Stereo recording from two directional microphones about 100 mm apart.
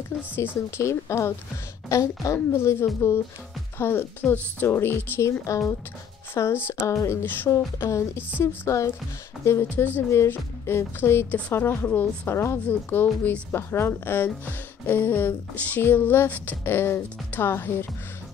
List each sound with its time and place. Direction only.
0.7 s a woman's voice: 25° left (ahead or behind)